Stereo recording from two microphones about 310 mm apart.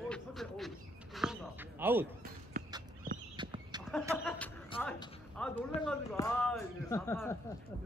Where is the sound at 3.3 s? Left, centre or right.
Centre.